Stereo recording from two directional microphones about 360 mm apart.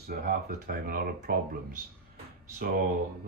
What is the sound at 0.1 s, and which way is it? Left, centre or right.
Speech, right.